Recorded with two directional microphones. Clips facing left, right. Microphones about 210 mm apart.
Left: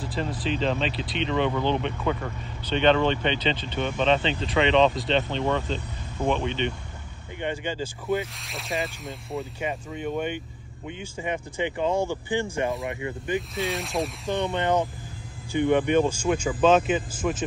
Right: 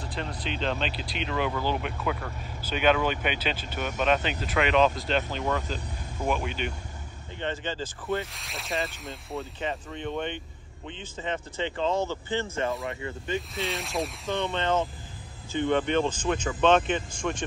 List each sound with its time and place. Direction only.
0.0 s speech: 5° left (ahead or behind)
7.3 s speech: 10° left (ahead or behind)
8.2 s speech: centre (ahead or behind); by 13.4 s 20° left (ahead or behind)
13.6 s speech: centre (ahead or behind)
14.4 s speech: 15° left (ahead or behind)